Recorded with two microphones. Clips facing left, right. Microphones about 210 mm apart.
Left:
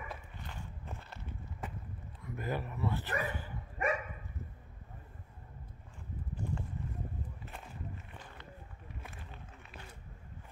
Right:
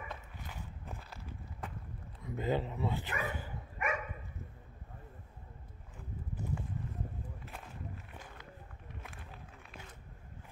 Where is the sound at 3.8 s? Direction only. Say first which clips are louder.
Left 3 dB; 35° left (ahead or behind).